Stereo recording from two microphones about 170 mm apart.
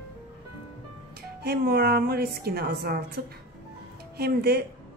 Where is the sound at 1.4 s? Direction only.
70° right (ahead or behind).